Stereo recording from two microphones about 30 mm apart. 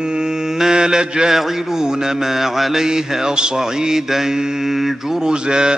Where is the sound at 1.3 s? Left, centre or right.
Centre.